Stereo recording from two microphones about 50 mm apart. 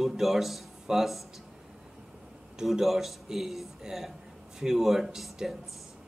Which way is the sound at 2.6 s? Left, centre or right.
Centre.